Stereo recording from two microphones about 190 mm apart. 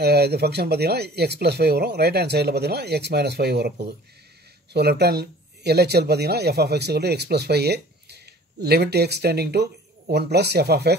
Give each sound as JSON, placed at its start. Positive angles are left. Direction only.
{"t": 0.0, "sound": "speech", "side_deg": -55}
{"t": 4.7, "sound": "speech", "side_deg": -60}